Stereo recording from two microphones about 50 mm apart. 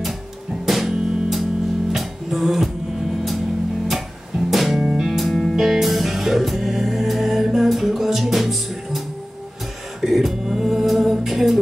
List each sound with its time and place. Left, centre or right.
0.7 s music: centre
4.5 s music: centre
4.8 s music: centre
5.1 s music: centre
10.0 s a sound: centre